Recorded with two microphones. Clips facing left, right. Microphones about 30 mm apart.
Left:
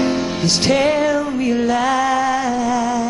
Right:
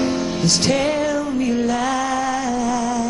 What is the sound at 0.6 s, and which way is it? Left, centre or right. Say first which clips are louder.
Music: left 5 dB; centre.